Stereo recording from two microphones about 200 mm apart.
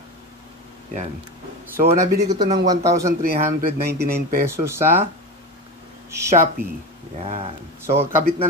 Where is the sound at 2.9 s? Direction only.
15° right (ahead or behind).